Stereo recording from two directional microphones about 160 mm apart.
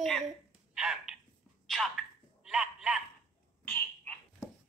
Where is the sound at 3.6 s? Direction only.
10° left (ahead or behind).